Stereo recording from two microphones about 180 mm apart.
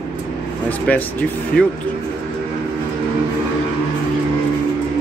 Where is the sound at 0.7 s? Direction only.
10° left (ahead or behind).